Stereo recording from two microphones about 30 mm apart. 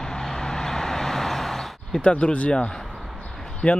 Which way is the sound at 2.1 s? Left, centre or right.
Left.